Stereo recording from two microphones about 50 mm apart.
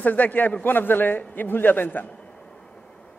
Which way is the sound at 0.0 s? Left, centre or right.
Left.